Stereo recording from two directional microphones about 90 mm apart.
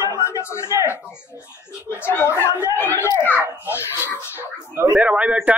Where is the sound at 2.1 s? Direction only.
25° left (ahead or behind).